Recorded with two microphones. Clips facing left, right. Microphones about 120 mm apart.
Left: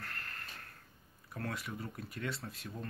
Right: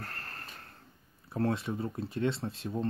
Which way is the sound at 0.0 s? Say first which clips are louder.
Right 3 dB; 35° right (ahead or behind).